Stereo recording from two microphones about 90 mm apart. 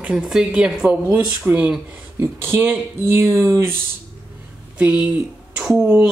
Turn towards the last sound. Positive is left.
turn(degrees=0)  # may be behind; listen again after turning